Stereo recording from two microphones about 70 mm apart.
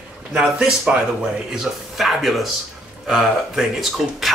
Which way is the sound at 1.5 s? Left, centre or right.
Centre.